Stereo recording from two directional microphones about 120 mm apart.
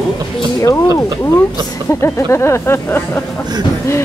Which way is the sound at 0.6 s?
25° left (ahead or behind).